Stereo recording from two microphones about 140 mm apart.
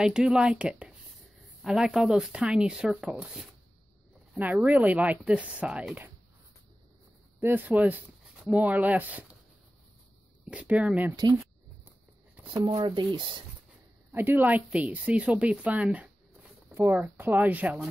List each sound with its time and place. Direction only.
0.0 s a woman's voice: 5° right (ahead or behind)
7.4 s a woman's voice: 15° right (ahead or behind)
10.4 s a woman's voice: 10° right (ahead or behind)
12.4 s speech: 35° right (ahead or behind)
14.1 s a woman's voice: 15° right (ahead or behind)